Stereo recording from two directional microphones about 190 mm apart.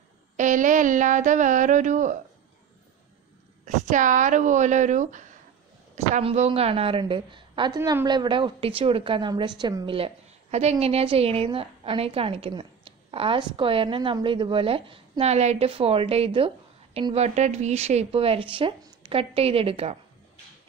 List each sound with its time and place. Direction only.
0.4 s speech: 40° right (ahead or behind)
3.6 s a woman's voice: 40° right (ahead or behind)